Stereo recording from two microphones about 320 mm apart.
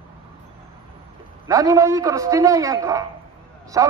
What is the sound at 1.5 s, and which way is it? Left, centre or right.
A man's voice, centre.